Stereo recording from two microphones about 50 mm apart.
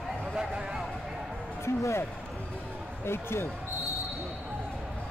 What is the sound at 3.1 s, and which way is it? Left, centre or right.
Speech, left.